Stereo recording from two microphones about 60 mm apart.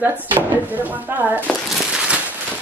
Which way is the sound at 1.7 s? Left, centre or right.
Centre.